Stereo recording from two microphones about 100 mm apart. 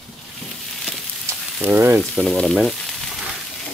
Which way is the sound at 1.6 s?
25° right (ahead or behind).